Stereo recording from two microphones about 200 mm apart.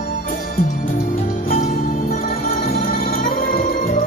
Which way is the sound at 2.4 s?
45° left (ahead or behind).